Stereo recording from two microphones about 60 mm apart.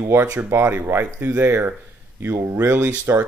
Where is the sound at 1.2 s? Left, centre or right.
Right.